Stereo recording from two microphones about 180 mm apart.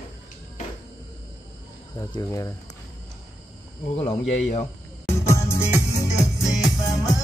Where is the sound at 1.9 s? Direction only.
20° left (ahead or behind).